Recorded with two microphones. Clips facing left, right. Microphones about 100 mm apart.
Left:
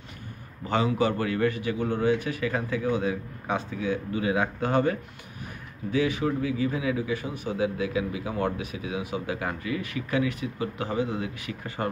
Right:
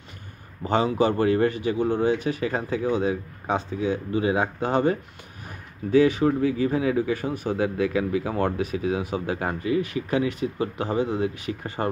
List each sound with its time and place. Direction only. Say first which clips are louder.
0.7 s speech: right 3 dB; 30° right (ahead or behind)
5.9 s speech: right 7 dB; 35° right (ahead or behind)